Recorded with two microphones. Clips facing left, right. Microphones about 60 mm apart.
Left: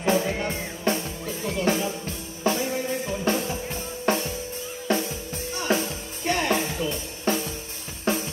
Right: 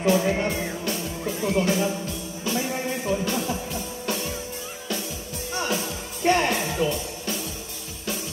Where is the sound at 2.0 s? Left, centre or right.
Left.